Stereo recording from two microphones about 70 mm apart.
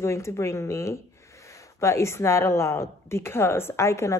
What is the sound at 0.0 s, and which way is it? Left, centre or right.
Speech, left.